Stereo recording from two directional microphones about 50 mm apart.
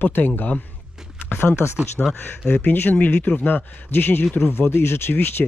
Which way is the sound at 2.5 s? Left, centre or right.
Left.